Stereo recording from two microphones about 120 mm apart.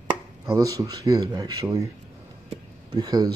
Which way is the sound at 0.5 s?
30° right (ahead or behind).